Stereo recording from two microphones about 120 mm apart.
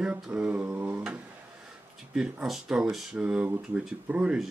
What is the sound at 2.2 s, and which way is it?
Speech, 5° right (ahead or behind).